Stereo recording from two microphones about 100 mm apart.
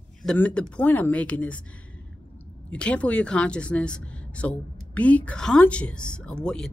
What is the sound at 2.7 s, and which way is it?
Speech, 10° left (ahead or behind).